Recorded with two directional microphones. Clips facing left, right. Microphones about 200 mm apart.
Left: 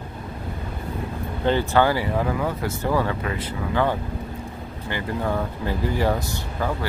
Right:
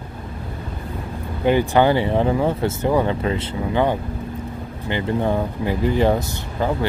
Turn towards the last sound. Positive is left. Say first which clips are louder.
# right 4 dB
turn(degrees=-20)  # may be behind; listen again after turning